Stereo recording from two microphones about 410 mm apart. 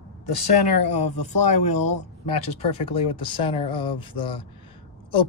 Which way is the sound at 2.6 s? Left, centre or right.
Centre.